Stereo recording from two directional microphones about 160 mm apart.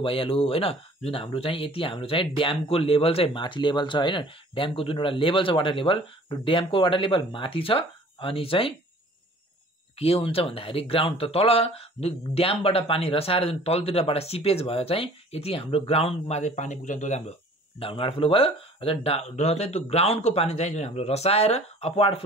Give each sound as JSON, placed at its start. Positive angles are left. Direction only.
{"t": 0.0, "sound": "speech", "side_deg": 35}
{"t": 9.9, "sound": "speech", "side_deg": 40}
{"t": 17.7, "sound": "speech", "side_deg": 35}